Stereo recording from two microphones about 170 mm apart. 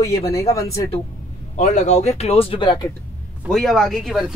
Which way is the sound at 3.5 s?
Centre (ahead or behind).